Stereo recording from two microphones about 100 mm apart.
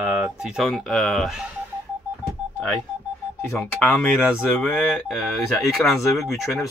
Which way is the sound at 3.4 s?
20° left (ahead or behind).